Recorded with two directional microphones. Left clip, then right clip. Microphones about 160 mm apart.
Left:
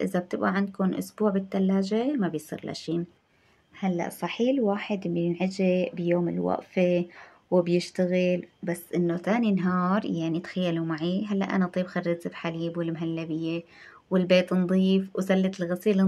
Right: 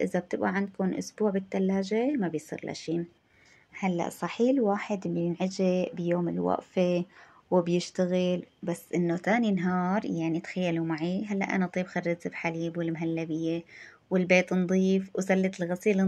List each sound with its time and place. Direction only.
0.0 s speech: 15° right (ahead or behind)
3.8 s speech: 30° right (ahead or behind)